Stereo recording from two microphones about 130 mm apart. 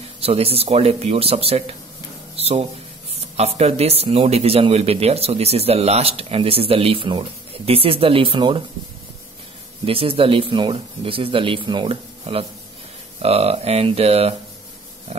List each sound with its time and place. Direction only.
0.2 s a man's voice: 50° right (ahead or behind)
2.3 s music: 50° right (ahead or behind)
3.3 s a man's voice: 55° right (ahead or behind)
9.8 s a man's voice: 45° right (ahead or behind)